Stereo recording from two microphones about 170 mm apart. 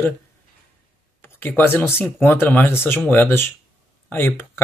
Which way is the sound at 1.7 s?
15° left (ahead or behind).